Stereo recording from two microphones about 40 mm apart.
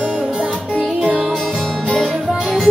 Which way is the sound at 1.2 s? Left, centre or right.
Centre.